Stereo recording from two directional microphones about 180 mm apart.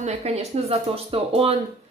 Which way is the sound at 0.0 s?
35° right (ahead or behind).